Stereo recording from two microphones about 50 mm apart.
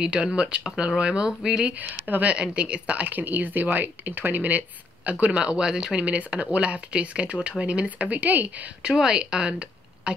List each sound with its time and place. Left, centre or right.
0.0 s speech: centre
1.9 s speech: right
2.3 s speech: centre; by 5.1 s right
5.2 s speech: right
6.0 s speech: right
8.8 s speech: centre